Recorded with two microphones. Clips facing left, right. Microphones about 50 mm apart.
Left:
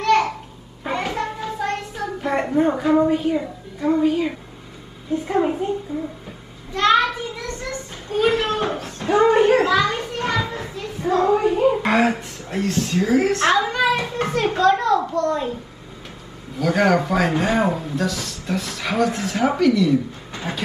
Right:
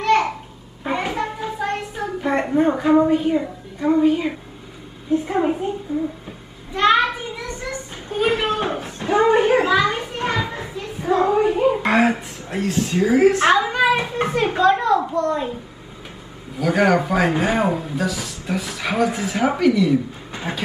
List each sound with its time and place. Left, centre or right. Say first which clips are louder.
0.0 s babbling: even; centre
0.8 s a sound: right 1 dB; centre
2.0 s a woman's voice: right 1 dB; centre
6.7 s a sound: right 1 dB; centre
12.0 s a woman's voice: right 1 dB; centre
16.5 s speech: right 1 dB; centre